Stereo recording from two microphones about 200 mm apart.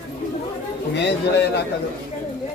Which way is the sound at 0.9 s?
60° left (ahead or behind).